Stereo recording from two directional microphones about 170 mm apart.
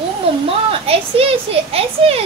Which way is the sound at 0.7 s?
35° right (ahead or behind).